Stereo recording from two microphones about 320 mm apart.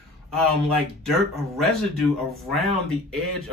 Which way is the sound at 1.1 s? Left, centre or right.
Centre.